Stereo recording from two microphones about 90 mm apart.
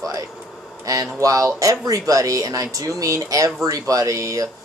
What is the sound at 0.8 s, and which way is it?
Speech, 40° right (ahead or behind).